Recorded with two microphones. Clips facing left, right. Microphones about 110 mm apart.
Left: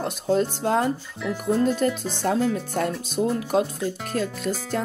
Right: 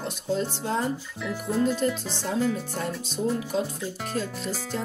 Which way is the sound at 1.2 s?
Centre (ahead or behind).